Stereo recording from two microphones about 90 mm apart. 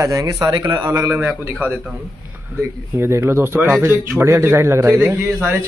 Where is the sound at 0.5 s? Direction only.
60° right (ahead or behind).